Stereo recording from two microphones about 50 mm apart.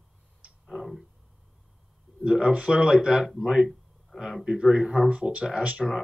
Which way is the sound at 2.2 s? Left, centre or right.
Centre.